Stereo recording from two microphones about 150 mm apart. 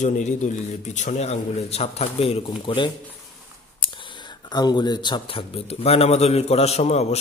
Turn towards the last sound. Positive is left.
turn(degrees=45)  # may be behind; listen again after turning